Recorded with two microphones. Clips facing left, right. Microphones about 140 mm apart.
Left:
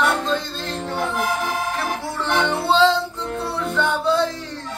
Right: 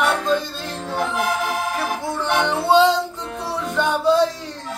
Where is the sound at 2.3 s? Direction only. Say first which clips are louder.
Right 1 dB; 15° right (ahead or behind).